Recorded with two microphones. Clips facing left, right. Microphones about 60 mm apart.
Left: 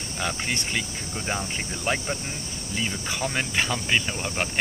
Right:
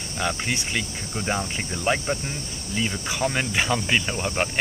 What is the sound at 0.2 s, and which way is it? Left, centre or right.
Speech, centre.